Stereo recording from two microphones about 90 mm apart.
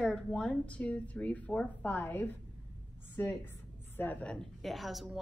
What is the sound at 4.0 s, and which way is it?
Speech, 15° left (ahead or behind).